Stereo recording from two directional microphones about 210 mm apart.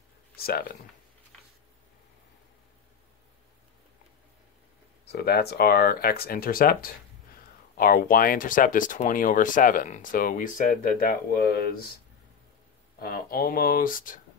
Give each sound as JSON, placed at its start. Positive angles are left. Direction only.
{"t": 0.4, "sound": "speech", "side_deg": 45}
{"t": 5.0, "sound": "speech", "side_deg": 50}
{"t": 13.0, "sound": "speech", "side_deg": 45}